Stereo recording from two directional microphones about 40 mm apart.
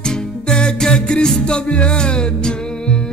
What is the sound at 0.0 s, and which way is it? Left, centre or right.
Music, centre.